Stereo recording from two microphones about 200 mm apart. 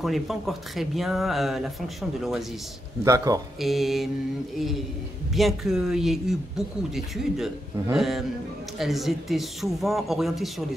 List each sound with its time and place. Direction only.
0.0 s speech: centre (ahead or behind)
3.0 s a man's voice: 15° right (ahead or behind)
3.6 s speech: centre (ahead or behind)
5.3 s speech: centre (ahead or behind)